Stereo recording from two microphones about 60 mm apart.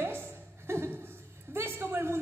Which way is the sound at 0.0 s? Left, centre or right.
Right.